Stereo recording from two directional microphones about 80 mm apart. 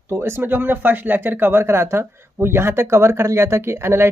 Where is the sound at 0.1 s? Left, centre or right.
Right.